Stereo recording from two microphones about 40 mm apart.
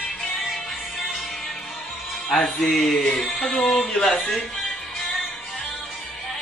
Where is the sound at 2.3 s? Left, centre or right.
Centre.